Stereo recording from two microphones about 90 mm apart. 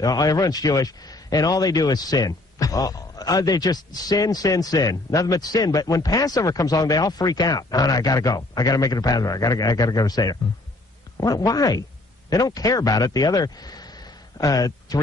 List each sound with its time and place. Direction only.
0.0 s a man's voice: 45° left (ahead or behind)